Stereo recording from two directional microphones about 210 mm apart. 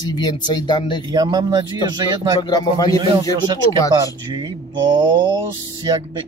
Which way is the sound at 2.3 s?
20° left (ahead or behind).